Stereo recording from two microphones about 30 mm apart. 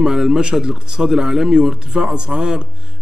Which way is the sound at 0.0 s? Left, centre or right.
Right.